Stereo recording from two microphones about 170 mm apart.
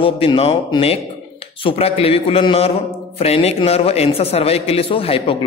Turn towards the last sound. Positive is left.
turn(degrees=35)  # may be behind; listen again after turning